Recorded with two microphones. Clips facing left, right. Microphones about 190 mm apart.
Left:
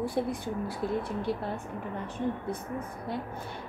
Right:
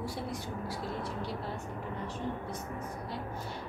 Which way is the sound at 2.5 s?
55° left (ahead or behind).